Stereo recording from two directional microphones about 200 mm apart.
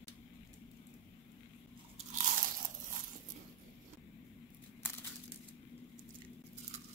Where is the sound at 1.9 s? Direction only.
40° right (ahead or behind).